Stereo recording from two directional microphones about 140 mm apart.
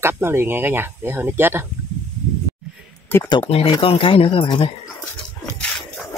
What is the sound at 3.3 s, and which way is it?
Speech, 40° left (ahead or behind).